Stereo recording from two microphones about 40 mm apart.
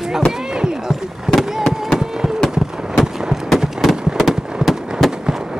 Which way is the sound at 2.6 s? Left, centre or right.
Centre.